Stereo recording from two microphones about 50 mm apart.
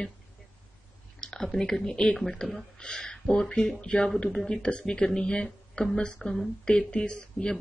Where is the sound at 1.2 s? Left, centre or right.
Centre.